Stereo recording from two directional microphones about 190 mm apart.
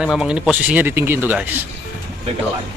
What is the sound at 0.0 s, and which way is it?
Speech, 5° right (ahead or behind).